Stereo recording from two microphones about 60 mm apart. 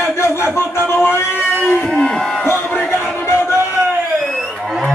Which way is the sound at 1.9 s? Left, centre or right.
Centre.